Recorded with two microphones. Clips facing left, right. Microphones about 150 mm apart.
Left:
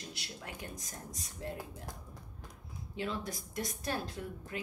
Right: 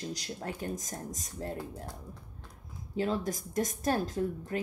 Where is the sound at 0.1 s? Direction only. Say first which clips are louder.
Right 8 dB; 40° right (ahead or behind).